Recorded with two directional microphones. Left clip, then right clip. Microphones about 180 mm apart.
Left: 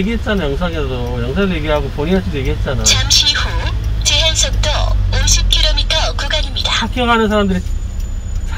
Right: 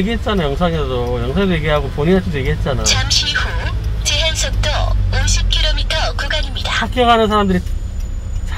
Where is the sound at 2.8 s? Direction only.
Centre (ahead or behind).